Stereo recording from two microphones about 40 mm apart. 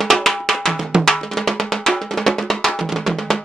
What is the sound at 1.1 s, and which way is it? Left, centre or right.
Drum, centre.